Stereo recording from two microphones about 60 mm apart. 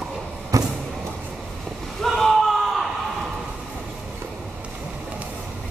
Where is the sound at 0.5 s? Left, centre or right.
Right.